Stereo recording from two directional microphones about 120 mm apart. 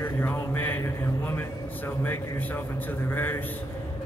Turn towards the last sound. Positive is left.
turn(degrees=15)  # may be behind; listen again after turning